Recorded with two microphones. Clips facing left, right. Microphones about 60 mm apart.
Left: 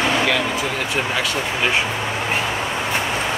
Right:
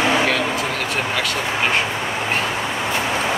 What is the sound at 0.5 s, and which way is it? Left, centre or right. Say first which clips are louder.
Vehicle: even; right.